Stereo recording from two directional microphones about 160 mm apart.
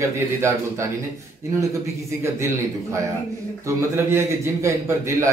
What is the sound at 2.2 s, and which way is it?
A man's voice, 15° right (ahead or behind).